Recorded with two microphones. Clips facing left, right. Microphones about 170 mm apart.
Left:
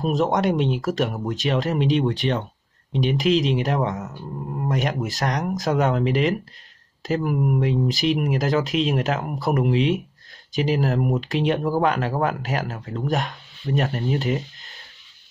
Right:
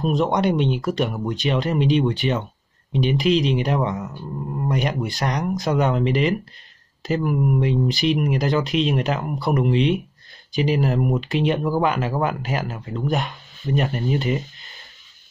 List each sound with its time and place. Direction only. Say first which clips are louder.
0.0 s speech: right 1 dB; centre (ahead or behind)